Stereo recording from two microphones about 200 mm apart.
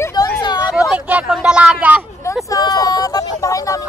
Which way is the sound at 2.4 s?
20° left (ahead or behind).